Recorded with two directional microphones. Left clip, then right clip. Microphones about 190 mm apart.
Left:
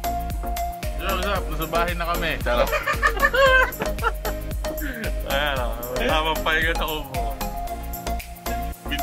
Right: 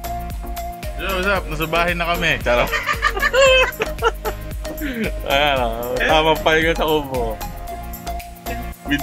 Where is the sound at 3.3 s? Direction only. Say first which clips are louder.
Right 5 dB; 5° right (ahead or behind).